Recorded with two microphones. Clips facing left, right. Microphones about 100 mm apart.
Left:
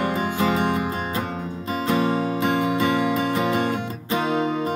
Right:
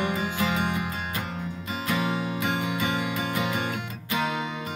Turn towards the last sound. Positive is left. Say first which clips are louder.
# left 5 dB
turn(degrees=35)  # may be behind; listen again after turning